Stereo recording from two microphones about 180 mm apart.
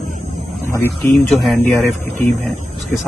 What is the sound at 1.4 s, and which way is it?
Speech, centre (ahead or behind).